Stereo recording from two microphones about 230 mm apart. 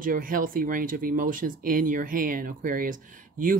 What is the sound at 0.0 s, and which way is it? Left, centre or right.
Speech, right.